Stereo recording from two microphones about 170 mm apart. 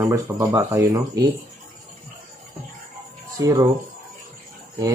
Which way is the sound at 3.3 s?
20° right (ahead or behind).